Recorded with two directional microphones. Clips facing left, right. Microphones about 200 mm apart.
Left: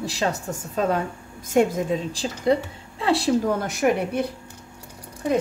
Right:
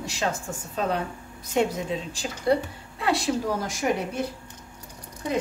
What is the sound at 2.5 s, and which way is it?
Speech, 25° left (ahead or behind).